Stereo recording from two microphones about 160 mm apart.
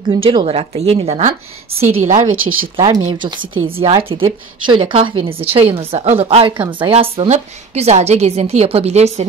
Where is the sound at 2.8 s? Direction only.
25° right (ahead or behind).